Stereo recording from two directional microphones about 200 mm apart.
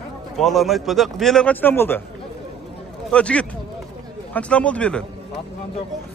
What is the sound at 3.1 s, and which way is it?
Speech, 5° left (ahead or behind).